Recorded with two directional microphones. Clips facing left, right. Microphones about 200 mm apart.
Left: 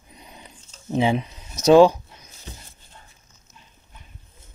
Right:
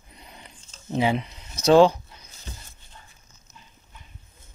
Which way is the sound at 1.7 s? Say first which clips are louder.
Left 3 dB; 15° left (ahead or behind).